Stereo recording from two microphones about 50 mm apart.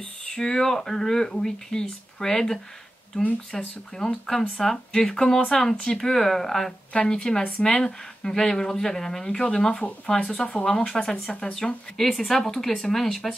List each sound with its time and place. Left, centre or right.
0.3 s speech: centre
6.9 s speech: centre